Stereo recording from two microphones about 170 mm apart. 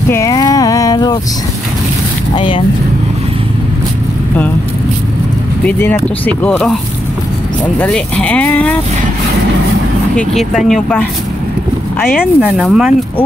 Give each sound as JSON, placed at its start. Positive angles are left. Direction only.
{"t": 0.1, "sound": "a sound", "side_deg": 20}
{"t": 2.3, "sound": "speech", "side_deg": 30}
{"t": 5.7, "sound": "speech", "side_deg": 10}
{"t": 7.8, "sound": "speech", "side_deg": 5}
{"t": 10.1, "sound": "speech", "side_deg": 0}
{"t": 12.2, "sound": "speech", "side_deg": -5}